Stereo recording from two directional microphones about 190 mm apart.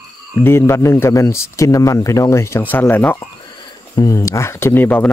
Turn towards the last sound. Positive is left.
turn(degrees=10)  # may be behind; listen again after turning